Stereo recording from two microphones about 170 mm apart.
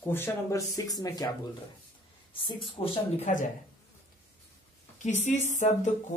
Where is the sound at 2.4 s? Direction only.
30° left (ahead or behind).